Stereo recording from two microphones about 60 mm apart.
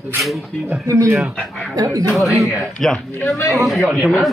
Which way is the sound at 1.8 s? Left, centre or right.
Right.